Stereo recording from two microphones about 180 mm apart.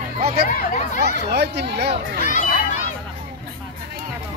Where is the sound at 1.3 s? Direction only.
65° right (ahead or behind).